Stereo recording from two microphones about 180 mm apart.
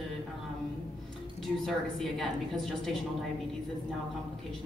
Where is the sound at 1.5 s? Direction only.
Centre (ahead or behind).